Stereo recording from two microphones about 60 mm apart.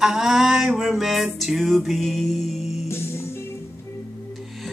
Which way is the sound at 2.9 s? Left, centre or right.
Left.